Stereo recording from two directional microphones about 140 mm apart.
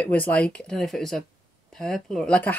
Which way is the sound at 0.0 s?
10° left (ahead or behind).